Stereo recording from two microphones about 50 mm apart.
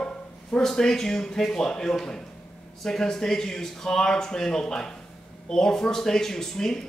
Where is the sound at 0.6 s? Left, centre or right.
Centre.